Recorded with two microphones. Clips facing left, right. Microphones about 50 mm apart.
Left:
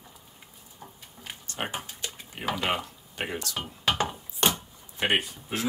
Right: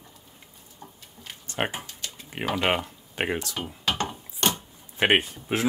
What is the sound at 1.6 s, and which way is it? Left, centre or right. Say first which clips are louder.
Speech: right 4 dB; right.